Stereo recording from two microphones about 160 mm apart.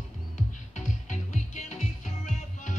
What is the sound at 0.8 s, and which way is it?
Music, 50° left (ahead or behind).